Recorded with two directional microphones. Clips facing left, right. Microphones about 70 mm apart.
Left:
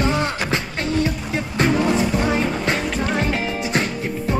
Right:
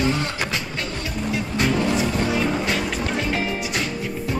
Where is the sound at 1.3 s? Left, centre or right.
Left.